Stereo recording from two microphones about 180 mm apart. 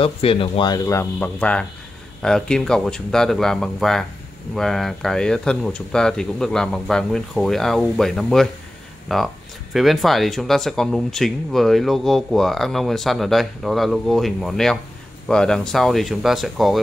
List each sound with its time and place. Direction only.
0.0 s speech: 30° left (ahead or behind); by 16.8 s centre (ahead or behind)